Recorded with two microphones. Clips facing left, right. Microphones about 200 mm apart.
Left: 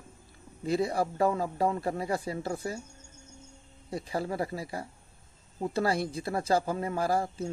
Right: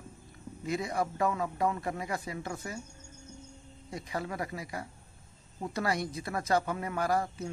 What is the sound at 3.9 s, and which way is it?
Speech, 30° left (ahead or behind).